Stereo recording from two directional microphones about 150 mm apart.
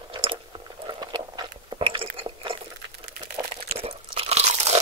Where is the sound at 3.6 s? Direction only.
40° right (ahead or behind).